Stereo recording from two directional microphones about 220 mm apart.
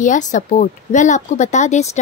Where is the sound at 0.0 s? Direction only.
35° left (ahead or behind).